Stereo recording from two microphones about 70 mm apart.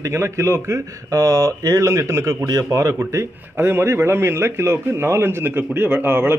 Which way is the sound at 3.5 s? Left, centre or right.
Right.